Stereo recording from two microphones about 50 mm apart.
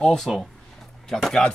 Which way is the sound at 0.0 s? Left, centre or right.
Centre.